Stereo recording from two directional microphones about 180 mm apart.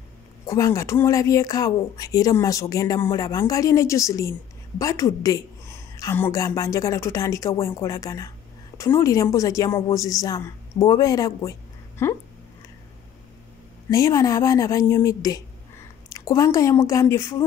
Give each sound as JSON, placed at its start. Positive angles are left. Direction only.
{"t": 0.5, "sound": "speech", "side_deg": 15}
{"t": 13.8, "sound": "speech", "side_deg": 15}